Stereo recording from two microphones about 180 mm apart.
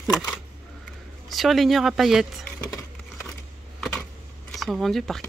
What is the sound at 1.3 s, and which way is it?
Speech, centre (ahead or behind).